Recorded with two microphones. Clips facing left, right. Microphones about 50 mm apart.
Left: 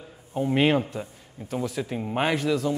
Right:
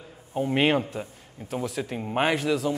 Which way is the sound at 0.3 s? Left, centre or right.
Centre.